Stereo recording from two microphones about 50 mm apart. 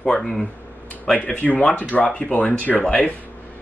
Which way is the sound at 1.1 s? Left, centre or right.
Left.